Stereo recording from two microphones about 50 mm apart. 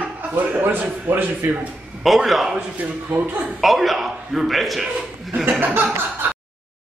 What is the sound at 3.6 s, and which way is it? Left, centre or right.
A man's voice, centre.